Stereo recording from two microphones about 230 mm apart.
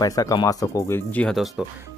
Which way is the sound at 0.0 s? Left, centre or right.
Centre.